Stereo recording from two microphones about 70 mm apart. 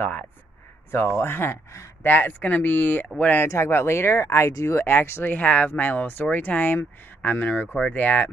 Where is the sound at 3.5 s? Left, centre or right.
Left.